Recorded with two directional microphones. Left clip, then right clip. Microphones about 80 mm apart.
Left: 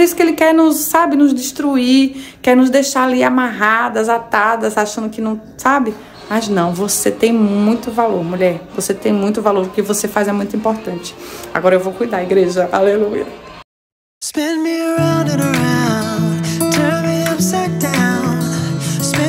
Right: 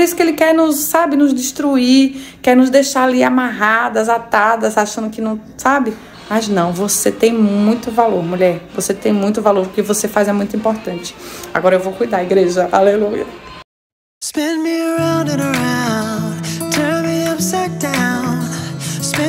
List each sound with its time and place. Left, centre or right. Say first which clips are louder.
0.0 s speech: left 1 dB; left
14.3 s music: even; centre